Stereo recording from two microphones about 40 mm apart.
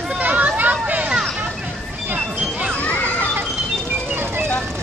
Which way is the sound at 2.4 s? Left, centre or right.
Right.